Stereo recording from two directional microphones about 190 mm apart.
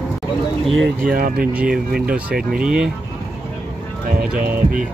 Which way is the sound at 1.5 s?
5° right (ahead or behind).